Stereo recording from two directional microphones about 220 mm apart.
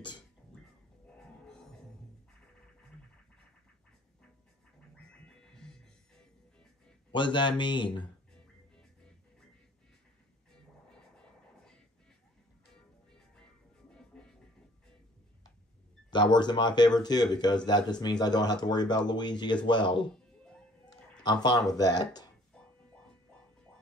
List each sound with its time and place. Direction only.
1.1 s music: 5° left (ahead or behind)
5.2 s music: 5° left (ahead or behind)
7.1 s speech: 20° left (ahead or behind)
10.5 s music: 5° left (ahead or behind)
14.1 s music: 5° left (ahead or behind)
16.1 s speech: 20° left (ahead or behind)
21.2 s speech: 20° left (ahead or behind)